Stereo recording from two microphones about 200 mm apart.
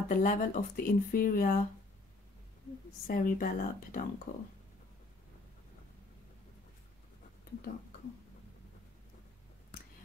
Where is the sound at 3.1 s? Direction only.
45° left (ahead or behind).